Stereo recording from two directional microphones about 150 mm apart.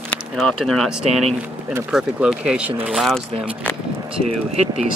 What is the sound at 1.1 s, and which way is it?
Speech, 45° right (ahead or behind).